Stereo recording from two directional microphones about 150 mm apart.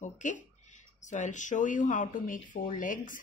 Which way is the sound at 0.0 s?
55° left (ahead or behind).